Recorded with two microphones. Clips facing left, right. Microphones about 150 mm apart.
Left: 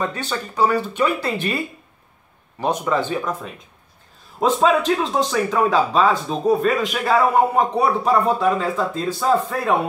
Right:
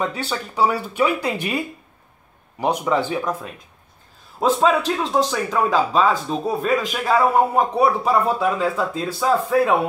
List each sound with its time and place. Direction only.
0.0 s speech: 10° right (ahead or behind)
2.6 s speech: 10° right (ahead or behind)
4.4 s a man's voice: centre (ahead or behind)